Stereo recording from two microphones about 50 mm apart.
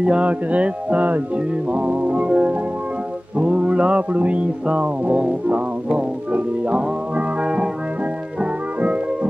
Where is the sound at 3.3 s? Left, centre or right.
Right.